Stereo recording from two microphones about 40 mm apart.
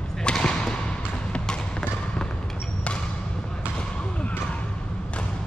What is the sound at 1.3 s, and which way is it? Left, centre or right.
Trickle, left.